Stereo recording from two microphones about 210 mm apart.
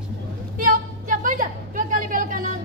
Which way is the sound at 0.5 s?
40° right (ahead or behind).